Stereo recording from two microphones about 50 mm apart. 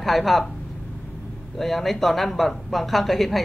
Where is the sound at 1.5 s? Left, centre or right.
Centre.